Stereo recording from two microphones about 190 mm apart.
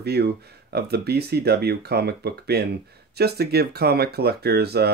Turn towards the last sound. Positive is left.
turn(degrees=-55)  # may be behind; listen again after turning